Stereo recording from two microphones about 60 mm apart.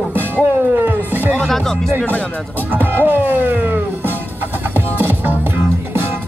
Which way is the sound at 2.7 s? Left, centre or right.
Right.